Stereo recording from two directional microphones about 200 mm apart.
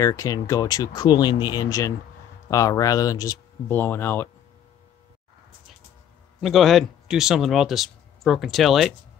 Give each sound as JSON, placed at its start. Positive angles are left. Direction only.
{"t": 0.0, "sound": "speech", "side_deg": 15}
{"t": 6.4, "sound": "speech", "side_deg": 0}